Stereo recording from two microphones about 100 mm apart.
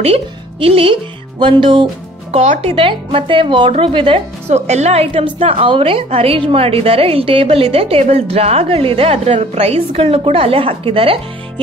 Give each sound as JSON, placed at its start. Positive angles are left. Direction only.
{"t": 0.0, "sound": "a woman's voice", "side_deg": -85}
{"t": 1.4, "sound": "speech", "side_deg": -55}
{"t": 2.3, "sound": "a woman's voice", "side_deg": -80}
{"t": 5.4, "sound": "a woman's voice", "side_deg": -70}